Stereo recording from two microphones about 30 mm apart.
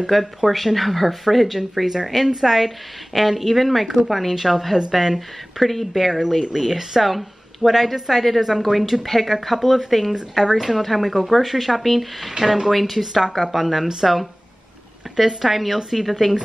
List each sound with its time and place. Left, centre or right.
0.1 s speech: centre
6.4 s speech: centre
10.1 s speech: centre
10.5 s speech: centre
12.4 s speech: centre
15.1 s speech: centre